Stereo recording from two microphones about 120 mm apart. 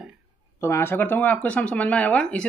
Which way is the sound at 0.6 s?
20° left (ahead or behind).